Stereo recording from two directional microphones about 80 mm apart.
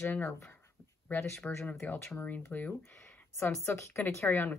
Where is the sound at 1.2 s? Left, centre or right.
Left.